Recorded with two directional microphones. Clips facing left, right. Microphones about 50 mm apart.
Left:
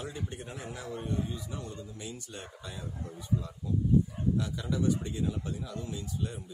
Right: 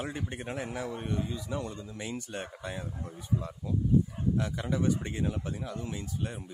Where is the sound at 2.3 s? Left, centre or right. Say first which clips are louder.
Right 6 dB; right.